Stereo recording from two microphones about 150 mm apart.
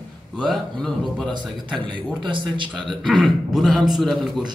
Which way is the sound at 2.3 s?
35° right (ahead or behind).